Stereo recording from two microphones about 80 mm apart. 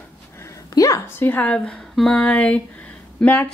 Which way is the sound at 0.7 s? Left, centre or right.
Left.